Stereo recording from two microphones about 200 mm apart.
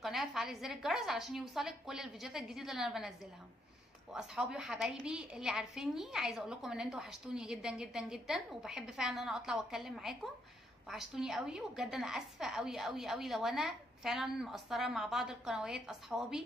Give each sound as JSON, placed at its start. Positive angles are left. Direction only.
{"t": 0.0, "sound": "a woman's voice", "side_deg": 0}
{"t": 4.1, "sound": "a woman's voice", "side_deg": -5}